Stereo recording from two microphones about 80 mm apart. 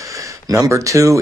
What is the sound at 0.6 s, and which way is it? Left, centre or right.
Speech, right.